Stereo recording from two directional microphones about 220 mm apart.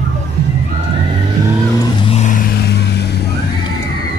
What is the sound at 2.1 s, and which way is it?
Vehicle, 30° left (ahead or behind).